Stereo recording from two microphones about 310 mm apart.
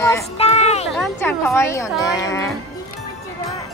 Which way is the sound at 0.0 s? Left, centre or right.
Centre.